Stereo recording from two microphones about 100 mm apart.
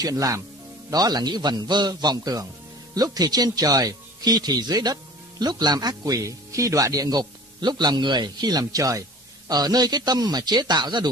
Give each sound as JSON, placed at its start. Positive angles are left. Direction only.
{"t": 0.0, "sound": "a man's voice", "side_deg": -35}